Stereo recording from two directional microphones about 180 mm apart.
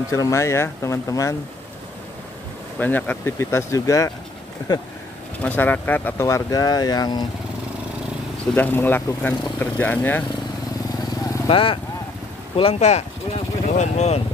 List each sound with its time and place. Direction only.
0.1 s speech: 15° left (ahead or behind)
2.8 s speech: 10° left (ahead or behind)
5.4 s speech: 10° left (ahead or behind)
8.5 s speech: 10° left (ahead or behind)
11.4 s speech: 30° left (ahead or behind)